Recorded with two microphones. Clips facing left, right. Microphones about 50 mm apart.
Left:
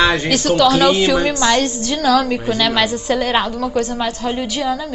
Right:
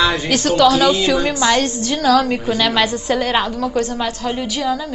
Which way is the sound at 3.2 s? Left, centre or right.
Centre.